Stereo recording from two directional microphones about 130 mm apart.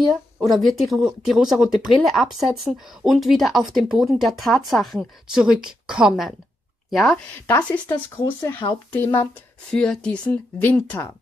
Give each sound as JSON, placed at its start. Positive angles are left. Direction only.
{"t": 0.4, "sound": "speech", "side_deg": 0}
{"t": 7.4, "sound": "speech", "side_deg": 15}
{"t": 9.7, "sound": "speech", "side_deg": 5}